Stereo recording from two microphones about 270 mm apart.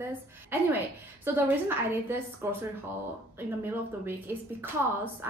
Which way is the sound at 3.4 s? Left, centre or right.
Centre.